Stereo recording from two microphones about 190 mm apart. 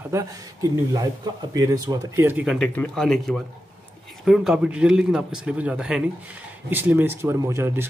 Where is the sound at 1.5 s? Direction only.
15° right (ahead or behind).